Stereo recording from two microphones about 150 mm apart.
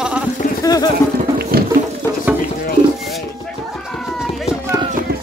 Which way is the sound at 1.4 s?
90° right.